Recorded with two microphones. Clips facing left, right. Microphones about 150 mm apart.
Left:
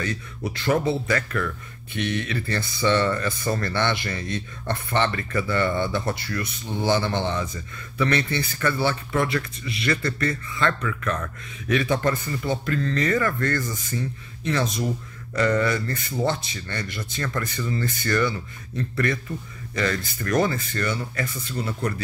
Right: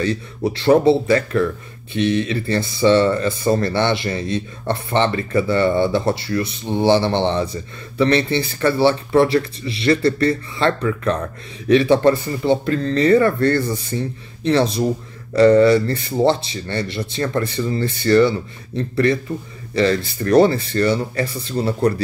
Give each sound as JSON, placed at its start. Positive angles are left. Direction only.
{"t": 0.0, "sound": "speech", "side_deg": -30}